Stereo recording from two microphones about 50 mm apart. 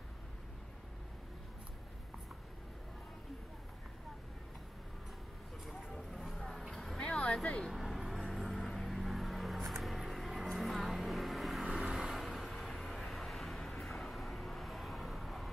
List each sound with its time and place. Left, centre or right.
5.7 s vehicle: centre
7.0 s a sound: centre
7.3 s vehicle: centre
7.7 s vehicle: centre